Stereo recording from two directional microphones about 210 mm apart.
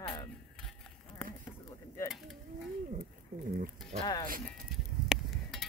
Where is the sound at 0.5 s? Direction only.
5° left (ahead or behind).